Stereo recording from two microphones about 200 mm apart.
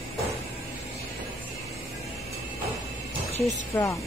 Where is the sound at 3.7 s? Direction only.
15° left (ahead or behind).